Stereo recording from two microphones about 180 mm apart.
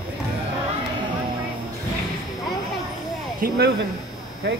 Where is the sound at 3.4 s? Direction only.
65° right (ahead or behind).